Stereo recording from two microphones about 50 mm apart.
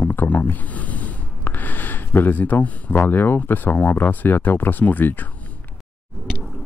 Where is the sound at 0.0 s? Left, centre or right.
Left.